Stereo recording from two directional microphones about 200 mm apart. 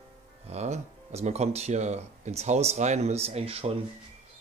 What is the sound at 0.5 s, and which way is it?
Speech, 35° right (ahead or behind).